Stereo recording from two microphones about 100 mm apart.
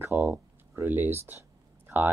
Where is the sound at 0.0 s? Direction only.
20° right (ahead or behind).